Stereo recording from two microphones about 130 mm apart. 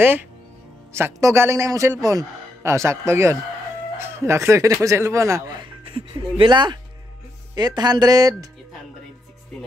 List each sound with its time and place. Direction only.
0.0 s a man's voice: 15° right (ahead or behind)
5.6 s a man's voice: 40° right (ahead or behind)